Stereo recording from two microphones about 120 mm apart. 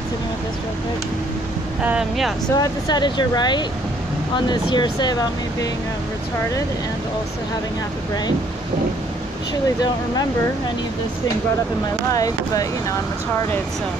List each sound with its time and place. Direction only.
1.8 s speech: 10° right (ahead or behind)
2.5 s speech: 35° left (ahead or behind)
12.1 s speech: 30° left (ahead or behind)